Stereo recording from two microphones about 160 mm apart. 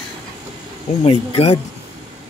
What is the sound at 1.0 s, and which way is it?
Speech, 40° left (ahead or behind).